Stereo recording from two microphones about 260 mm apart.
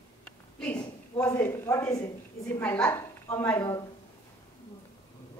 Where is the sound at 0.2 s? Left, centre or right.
Centre.